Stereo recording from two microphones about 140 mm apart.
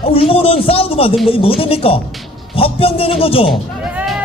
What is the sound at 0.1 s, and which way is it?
Speech, 45° left (ahead or behind).